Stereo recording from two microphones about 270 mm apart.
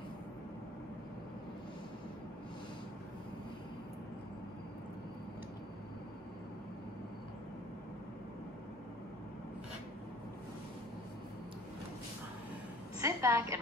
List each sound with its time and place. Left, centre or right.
13.0 s a woman's voice: centre